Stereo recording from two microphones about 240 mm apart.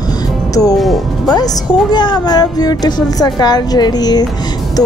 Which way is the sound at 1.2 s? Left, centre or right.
Centre.